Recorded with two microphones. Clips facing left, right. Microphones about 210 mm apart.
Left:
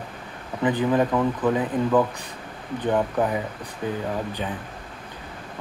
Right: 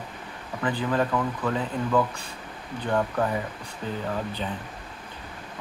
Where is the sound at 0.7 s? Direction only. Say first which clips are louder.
Left 5 dB; 20° left (ahead or behind).